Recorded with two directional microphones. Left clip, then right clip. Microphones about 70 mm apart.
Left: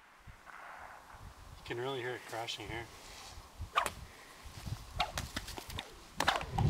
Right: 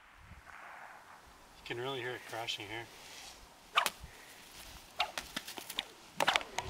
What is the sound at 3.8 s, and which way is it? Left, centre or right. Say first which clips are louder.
Whip: right 2 dB; right.